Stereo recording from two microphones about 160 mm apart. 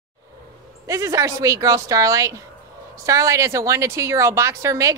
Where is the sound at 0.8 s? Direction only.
20° right (ahead or behind).